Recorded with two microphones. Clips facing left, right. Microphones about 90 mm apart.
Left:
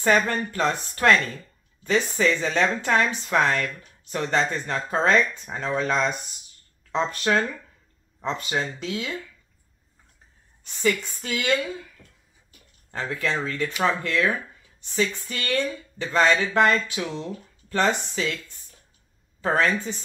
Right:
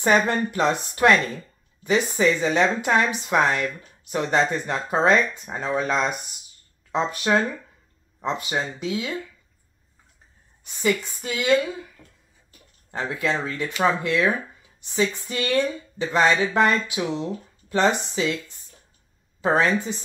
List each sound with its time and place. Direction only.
0.0 s speech: 15° right (ahead or behind)
10.6 s a woman's voice: 10° right (ahead or behind)
12.9 s speech: 20° right (ahead or behind)
19.4 s speech: 20° right (ahead or behind)